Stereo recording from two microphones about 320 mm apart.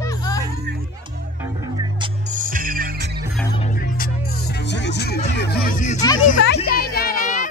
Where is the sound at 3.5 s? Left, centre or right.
Left.